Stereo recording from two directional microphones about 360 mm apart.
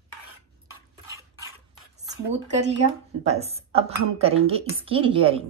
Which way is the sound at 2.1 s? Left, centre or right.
Centre.